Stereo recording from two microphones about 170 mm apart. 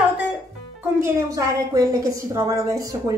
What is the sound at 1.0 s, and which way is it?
A woman's voice, 20° right (ahead or behind).